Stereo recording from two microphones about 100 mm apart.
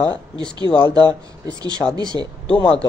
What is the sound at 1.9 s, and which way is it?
Speech, 45° right (ahead or behind).